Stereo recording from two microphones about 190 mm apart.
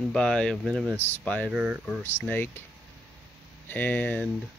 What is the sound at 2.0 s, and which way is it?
Speech, 10° left (ahead or behind).